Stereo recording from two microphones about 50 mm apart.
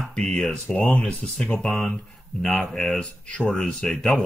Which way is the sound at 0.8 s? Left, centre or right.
Left.